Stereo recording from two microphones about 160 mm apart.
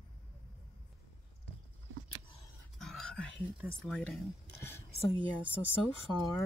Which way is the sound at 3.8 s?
5° left (ahead or behind).